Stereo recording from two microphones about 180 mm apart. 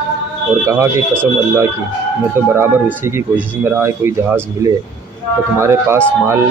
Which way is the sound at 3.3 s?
10° right (ahead or behind).